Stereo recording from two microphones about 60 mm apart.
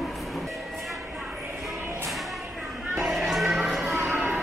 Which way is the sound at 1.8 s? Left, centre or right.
Right.